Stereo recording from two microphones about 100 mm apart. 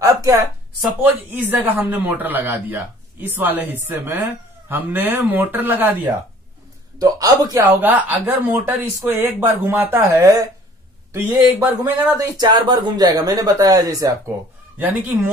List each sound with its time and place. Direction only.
0.0 s a sound: 35° right (ahead or behind)
1.0 s speech: 15° right (ahead or behind)
7.0 s speech: 40° right (ahead or behind)
7.7 s speech: 15° right (ahead or behind)
12.2 s speech: 45° right (ahead or behind)
14.8 s speech: 15° right (ahead or behind)